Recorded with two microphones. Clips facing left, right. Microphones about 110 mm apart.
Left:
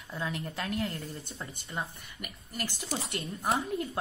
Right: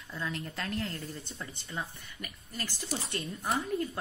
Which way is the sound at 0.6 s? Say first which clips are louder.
Left 3 dB; 5° left (ahead or behind).